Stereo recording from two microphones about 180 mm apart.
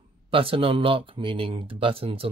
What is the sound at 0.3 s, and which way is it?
Speech, 30° right (ahead or behind).